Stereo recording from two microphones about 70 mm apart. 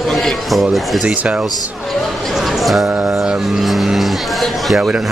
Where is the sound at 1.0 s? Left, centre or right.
Centre.